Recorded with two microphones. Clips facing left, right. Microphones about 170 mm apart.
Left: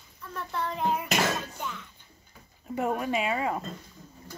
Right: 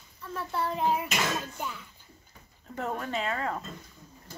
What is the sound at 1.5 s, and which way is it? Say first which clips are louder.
Speech: even; 5° right (ahead or behind).